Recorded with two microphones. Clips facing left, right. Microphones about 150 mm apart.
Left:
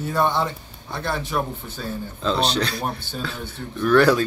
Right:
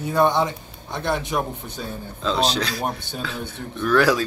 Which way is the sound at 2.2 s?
Centre (ahead or behind).